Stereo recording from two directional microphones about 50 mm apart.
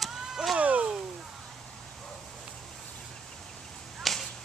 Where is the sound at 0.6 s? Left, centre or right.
Right.